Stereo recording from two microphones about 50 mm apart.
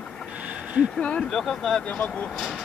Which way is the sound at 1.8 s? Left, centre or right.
Left.